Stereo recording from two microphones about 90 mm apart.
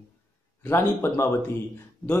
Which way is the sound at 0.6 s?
30° left (ahead or behind).